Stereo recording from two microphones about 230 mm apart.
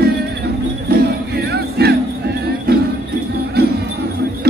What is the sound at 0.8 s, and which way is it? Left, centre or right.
Crowd, right.